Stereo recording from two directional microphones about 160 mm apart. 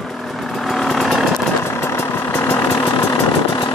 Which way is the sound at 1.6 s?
15° left (ahead or behind).